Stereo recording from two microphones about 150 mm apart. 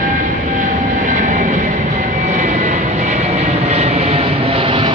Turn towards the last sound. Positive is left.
turn(degrees=-35)  # may be behind; listen again after turning